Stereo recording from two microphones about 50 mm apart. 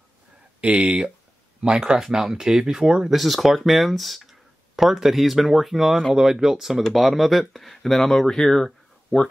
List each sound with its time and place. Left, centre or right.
0.6 s speech: right
2.0 s speech: centre
3.2 s speech: centre